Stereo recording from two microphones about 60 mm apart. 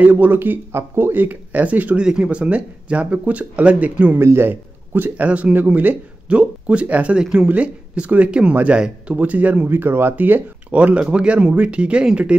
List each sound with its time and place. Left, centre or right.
0.0 s speech: right
4.2 s a man's voice: right
4.5 s speech: right
6.2 s speech: centre